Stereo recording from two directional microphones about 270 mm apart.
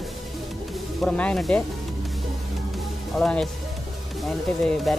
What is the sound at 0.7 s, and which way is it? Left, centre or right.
Speech, centre.